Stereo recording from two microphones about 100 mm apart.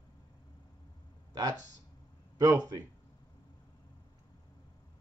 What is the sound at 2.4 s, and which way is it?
Speech, 40° right (ahead or behind).